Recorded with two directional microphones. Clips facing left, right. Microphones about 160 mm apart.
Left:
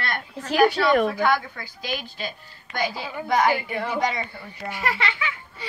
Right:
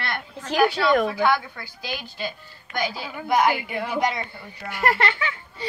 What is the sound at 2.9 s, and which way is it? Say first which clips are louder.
A woman's voice: right 2 dB; 5° right (ahead or behind).